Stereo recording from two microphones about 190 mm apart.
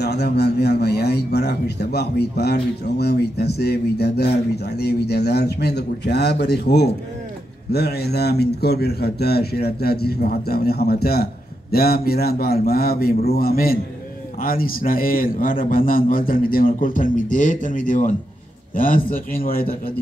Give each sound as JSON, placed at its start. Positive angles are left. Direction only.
{"t": 0.0, "sound": "a man's voice", "side_deg": 60}